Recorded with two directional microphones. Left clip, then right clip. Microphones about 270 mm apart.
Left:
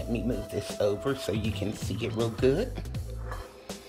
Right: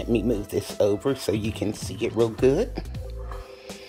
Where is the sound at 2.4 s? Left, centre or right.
Centre.